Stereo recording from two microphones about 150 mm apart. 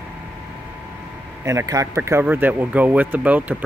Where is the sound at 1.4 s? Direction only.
20° right (ahead or behind).